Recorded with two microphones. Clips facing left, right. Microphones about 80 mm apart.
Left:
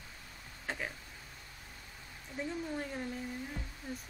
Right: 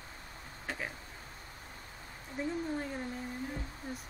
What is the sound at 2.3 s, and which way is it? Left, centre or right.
Speech, centre.